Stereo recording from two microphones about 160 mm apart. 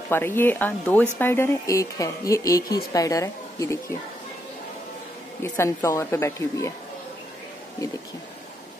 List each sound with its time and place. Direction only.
0.1 s a woman's voice: 15° left (ahead or behind)
5.4 s a woman's voice: 15° left (ahead or behind)